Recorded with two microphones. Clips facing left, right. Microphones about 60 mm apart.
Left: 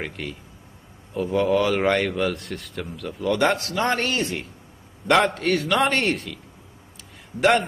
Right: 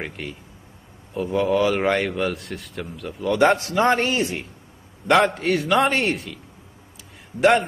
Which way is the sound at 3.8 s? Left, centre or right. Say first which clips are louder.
Right 3 dB; centre.